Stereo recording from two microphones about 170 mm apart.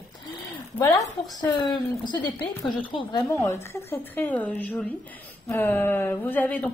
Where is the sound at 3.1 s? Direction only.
20° left (ahead or behind).